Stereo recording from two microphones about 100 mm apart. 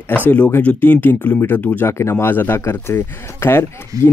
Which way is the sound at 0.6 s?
15° left (ahead or behind).